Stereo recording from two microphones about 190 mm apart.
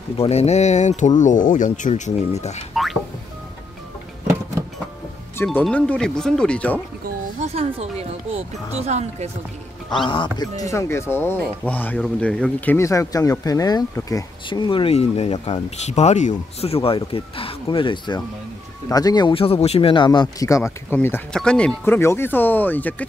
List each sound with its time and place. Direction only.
0.2 s speech: 35° left (ahead or behind)
2.7 s music: centre (ahead or behind)
5.4 s speech: 10° left (ahead or behind)
7.3 s speech: 35° right (ahead or behind)
10.0 s speech: 25° left (ahead or behind); by 23.0 s 10° left (ahead or behind)